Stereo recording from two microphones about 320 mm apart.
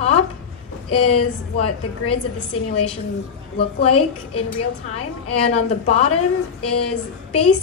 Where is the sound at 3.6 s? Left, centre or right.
Centre.